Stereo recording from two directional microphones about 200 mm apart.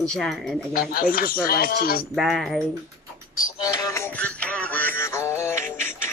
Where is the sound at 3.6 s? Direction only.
15° left (ahead or behind).